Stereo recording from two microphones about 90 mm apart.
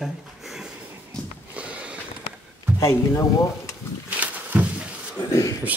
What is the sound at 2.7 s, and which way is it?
Speech, 35° left (ahead or behind).